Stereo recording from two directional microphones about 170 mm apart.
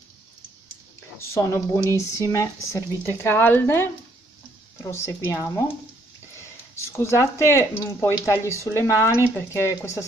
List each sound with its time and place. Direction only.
1.3 s speech: 15° left (ahead or behind)
7.0 s speech: 15° left (ahead or behind)